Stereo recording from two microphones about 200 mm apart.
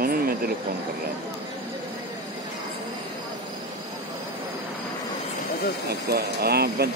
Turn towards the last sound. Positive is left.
turn(degrees=-50)  # may be behind; listen again after turning